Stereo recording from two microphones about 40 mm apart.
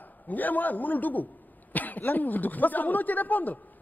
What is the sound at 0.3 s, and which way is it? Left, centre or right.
A woman's voice, left.